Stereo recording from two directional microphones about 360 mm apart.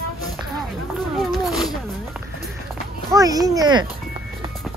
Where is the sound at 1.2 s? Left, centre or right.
Centre.